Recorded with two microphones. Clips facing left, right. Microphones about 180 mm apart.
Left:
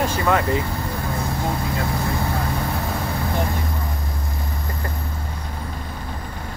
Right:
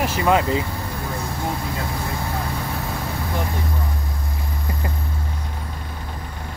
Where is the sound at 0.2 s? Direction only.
20° right (ahead or behind).